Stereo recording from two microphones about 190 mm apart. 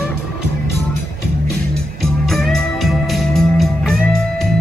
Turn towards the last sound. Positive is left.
turn(degrees=0)  # may be behind; listen again after turning